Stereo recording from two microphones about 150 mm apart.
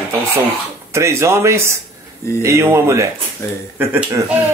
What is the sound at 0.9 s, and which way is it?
A man's voice, 20° right (ahead or behind).